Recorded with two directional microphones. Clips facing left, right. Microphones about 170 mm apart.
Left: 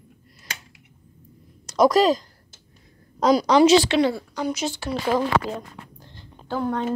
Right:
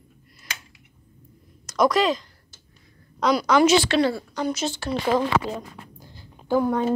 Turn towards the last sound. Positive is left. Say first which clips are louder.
# right 4 dB
turn(degrees=-10)  # may be behind; listen again after turning